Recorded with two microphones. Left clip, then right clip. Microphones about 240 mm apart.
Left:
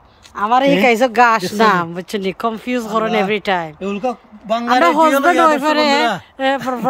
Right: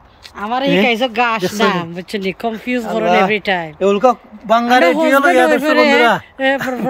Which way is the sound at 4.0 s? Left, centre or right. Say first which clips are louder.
Right 9 dB; centre.